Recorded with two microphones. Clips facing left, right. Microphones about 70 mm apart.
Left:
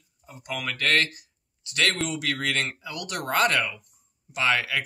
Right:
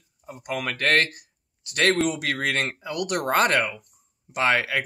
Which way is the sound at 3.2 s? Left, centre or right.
Right.